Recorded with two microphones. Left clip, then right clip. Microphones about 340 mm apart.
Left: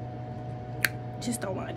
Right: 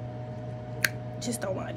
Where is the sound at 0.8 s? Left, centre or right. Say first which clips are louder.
Even; centre.